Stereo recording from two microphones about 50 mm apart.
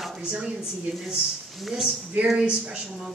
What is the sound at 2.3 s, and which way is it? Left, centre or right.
Speech, centre.